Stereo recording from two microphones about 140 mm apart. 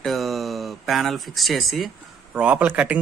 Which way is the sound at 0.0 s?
Centre (ahead or behind).